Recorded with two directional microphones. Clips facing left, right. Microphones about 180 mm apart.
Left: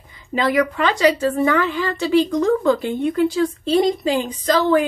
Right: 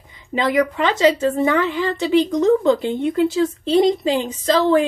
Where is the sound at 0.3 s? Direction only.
20° right (ahead or behind).